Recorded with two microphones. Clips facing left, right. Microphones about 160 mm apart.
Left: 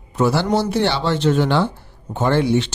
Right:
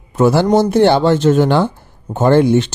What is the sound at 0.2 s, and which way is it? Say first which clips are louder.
A man's voice: right 6 dB; 50° right (ahead or behind).